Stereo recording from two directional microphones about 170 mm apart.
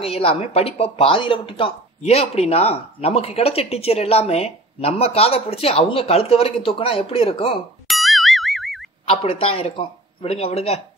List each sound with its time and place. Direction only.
0.0 s speech: 35° left (ahead or behind)
7.9 s boing: centre (ahead or behind)
9.0 s speech: 35° left (ahead or behind)